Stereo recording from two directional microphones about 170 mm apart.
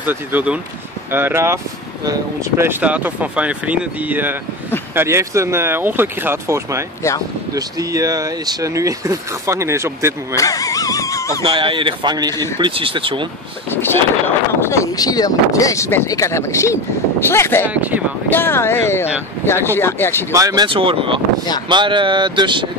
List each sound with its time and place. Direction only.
0.0 s speech: 10° right (ahead or behind)
10.3 s a sound: 20° left (ahead or behind)
11.4 s speech: 30° right (ahead or behind)
13.7 s speech: 15° left (ahead or behind)
20.2 s speech: 20° right (ahead or behind)